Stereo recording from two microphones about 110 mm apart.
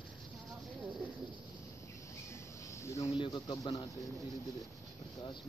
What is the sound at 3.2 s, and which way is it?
Speech, 45° left (ahead or behind).